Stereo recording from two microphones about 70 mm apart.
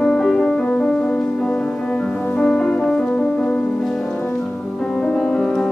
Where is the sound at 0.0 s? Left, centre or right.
Centre.